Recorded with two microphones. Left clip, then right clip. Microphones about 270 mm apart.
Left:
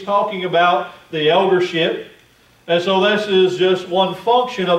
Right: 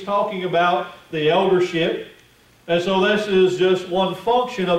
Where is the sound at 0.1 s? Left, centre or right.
Centre.